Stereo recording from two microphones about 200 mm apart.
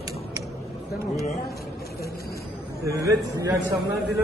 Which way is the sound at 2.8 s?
15° right (ahead or behind).